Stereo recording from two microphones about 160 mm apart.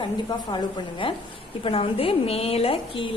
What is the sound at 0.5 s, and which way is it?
Speech, 35° left (ahead or behind).